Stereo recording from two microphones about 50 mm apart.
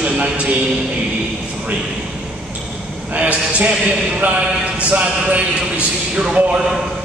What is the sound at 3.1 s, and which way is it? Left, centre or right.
Speech, right.